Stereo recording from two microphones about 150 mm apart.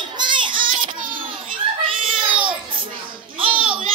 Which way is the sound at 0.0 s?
30° right (ahead or behind).